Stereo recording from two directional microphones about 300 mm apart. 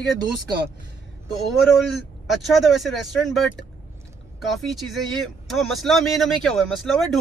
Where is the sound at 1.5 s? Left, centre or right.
Centre.